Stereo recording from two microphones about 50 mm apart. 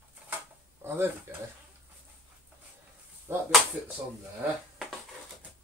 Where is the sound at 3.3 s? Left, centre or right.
Right.